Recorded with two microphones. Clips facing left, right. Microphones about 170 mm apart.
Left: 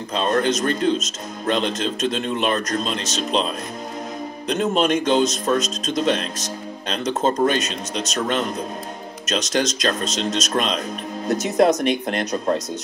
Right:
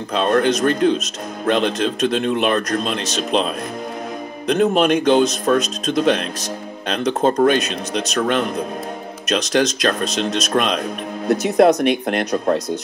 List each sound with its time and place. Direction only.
0.1 s speech: 60° right (ahead or behind)